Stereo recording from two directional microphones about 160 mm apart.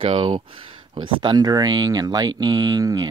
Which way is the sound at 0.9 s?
25° right (ahead or behind).